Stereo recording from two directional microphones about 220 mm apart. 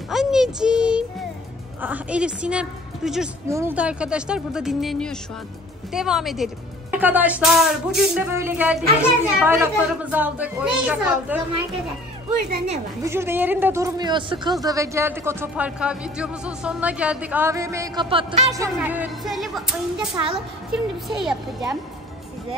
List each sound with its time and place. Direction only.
0.1 s music: centre (ahead or behind)
1.8 s a woman's voice: 5° right (ahead or behind)
12.4 s a woman's voice: 45° right (ahead or behind)
13.0 s a woman's voice: 10° right (ahead or behind)